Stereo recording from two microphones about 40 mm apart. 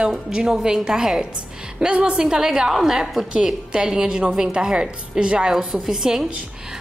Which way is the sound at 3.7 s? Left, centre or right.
Right.